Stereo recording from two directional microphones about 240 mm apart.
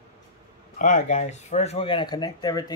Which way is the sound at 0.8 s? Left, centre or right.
Left.